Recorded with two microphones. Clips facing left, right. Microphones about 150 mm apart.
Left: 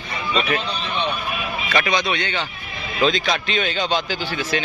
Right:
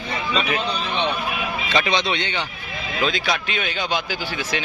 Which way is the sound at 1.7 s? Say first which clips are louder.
Left 1 dB; 25° right (ahead or behind).